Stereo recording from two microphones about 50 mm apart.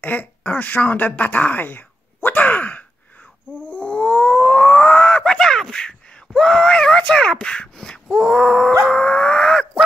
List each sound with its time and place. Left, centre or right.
0.0 s speech: left
3.6 s a sound: left
8.8 s groan: left